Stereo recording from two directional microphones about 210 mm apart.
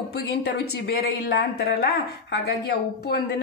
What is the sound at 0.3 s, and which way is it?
Speech, 50° left (ahead or behind).